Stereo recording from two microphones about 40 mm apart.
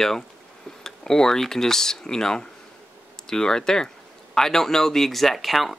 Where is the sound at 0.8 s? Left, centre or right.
Centre.